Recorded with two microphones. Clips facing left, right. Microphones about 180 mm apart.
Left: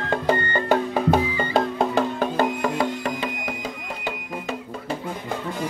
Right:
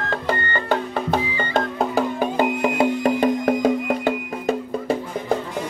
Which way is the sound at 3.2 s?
50° right (ahead or behind).